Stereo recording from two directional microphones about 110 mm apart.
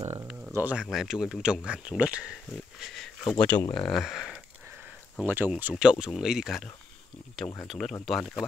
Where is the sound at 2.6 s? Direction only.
Centre (ahead or behind).